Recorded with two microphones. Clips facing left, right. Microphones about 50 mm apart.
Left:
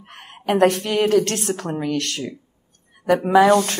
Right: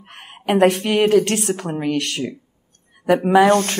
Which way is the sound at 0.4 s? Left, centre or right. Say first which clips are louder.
Right 1 dB; centre.